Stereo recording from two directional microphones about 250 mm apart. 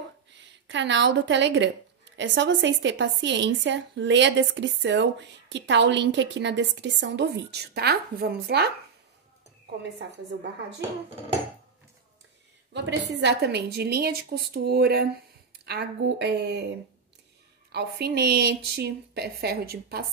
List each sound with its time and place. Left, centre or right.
0.3 s speech: right
12.7 s a woman's voice: right
17.6 s a woman's voice: right